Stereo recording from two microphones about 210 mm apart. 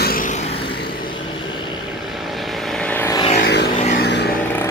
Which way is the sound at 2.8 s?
10° left (ahead or behind).